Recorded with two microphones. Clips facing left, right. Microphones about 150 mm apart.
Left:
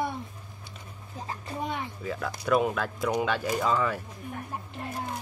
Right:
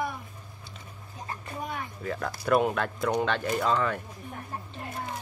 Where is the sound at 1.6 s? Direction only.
25° left (ahead or behind).